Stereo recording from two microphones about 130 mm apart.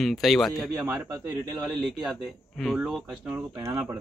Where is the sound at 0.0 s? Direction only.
Centre (ahead or behind).